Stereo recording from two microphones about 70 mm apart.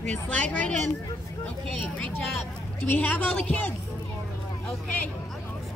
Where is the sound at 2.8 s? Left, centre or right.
Left.